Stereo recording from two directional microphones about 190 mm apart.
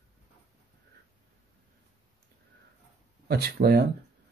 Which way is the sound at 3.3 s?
55° right (ahead or behind).